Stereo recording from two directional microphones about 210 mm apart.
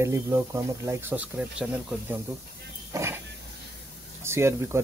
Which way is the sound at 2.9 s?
10° right (ahead or behind).